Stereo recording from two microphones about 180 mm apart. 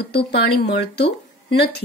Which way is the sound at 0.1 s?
65° left (ahead or behind).